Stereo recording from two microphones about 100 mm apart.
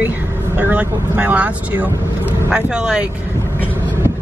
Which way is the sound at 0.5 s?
15° right (ahead or behind).